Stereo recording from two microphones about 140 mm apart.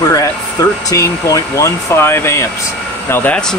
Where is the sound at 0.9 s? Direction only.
25° left (ahead or behind).